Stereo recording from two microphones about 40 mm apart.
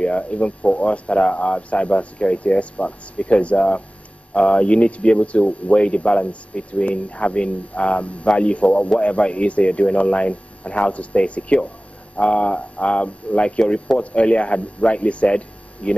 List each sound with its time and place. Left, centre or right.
0.0 s speech: left